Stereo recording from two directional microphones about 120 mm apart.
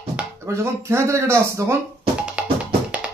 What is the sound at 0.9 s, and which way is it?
Speech, 20° right (ahead or behind).